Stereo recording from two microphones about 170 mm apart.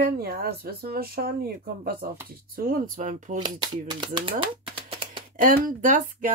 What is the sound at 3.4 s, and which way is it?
Speech, 25° right (ahead or behind).